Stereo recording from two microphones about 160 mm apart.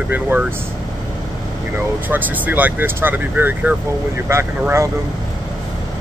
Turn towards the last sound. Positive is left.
turn(degrees=-15)  # may be behind; listen again after turning